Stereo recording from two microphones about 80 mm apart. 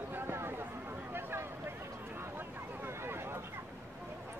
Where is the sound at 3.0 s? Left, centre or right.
Right.